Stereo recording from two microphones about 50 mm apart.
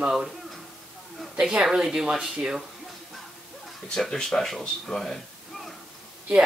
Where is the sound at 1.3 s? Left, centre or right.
Centre.